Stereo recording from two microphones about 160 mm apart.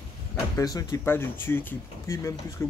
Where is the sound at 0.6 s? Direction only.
20° left (ahead or behind).